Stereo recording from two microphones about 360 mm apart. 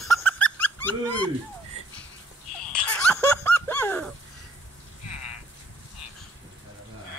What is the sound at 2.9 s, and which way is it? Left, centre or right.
Laughter, centre.